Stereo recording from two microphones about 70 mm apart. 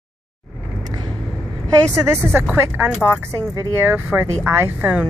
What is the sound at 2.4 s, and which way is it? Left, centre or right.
Speech, right.